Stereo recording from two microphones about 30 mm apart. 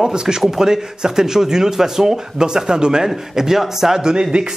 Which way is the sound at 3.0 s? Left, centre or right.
Centre.